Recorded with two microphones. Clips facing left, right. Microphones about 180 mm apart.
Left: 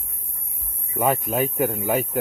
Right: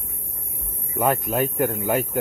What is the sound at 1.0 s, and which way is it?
Speech, centre (ahead or behind).